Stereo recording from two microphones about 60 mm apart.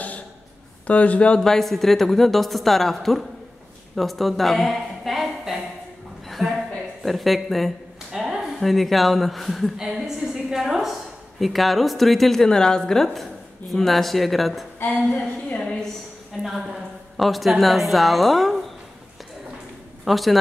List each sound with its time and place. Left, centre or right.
0.8 s speech: left
1.4 s a woman's voice: centre
6.2 s a sound: centre
9.8 s a woman's voice: centre
15.5 s a woman's voice: centre
17.2 s speech: centre
20.1 s speech: centre